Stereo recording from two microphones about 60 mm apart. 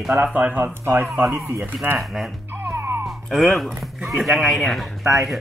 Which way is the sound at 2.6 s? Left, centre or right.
Right.